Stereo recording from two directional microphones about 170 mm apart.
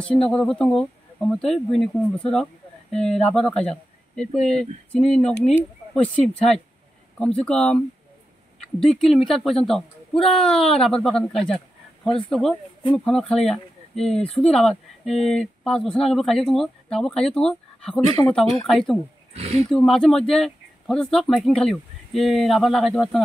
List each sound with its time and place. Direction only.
0.0 s speech: 5° left (ahead or behind)
19.3 s speech: 40° right (ahead or behind)
19.7 s speech: centre (ahead or behind)